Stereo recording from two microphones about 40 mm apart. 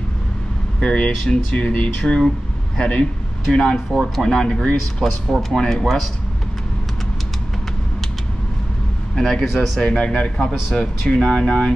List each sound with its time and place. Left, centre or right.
0.7 s speech: left
1.5 s speech: left
2.0 s speech: centre
9.1 s a man's voice: centre; by 11.7 s left